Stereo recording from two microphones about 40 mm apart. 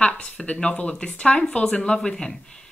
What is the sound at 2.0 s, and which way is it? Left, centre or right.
Speech, centre.